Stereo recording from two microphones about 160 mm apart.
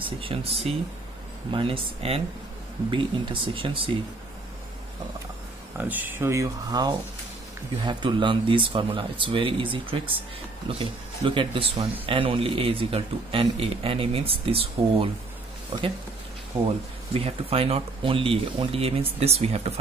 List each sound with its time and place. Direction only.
0.0 s speech: 35° right (ahead or behind)
5.8 s speech: 10° right (ahead or behind); by 15.0 s 35° right (ahead or behind)
16.6 s speech: 35° right (ahead or behind)